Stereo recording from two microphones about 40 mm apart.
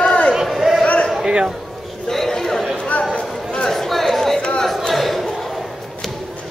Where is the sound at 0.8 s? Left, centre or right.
Left.